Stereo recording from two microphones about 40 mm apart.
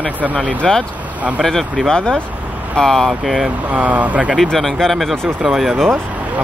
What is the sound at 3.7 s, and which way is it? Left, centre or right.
Speech, right.